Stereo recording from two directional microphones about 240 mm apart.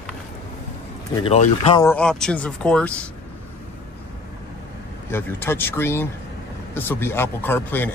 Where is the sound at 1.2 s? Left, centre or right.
Left.